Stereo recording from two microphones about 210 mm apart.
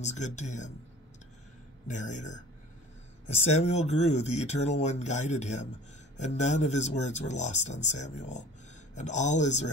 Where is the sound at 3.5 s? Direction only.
30° left (ahead or behind).